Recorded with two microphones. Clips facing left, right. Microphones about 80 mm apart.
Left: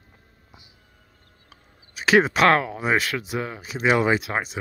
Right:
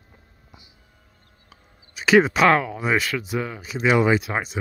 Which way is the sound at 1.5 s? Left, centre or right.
Centre.